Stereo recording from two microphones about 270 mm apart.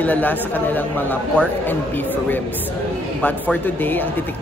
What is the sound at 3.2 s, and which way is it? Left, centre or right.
Speech, centre.